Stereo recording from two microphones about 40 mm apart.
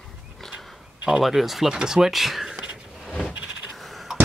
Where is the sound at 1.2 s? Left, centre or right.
Centre.